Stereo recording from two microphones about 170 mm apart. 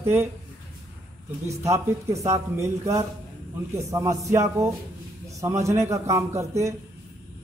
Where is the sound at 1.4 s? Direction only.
20° right (ahead or behind).